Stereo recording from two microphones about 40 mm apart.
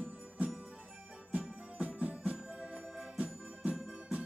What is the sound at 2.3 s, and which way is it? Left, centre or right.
Music, centre.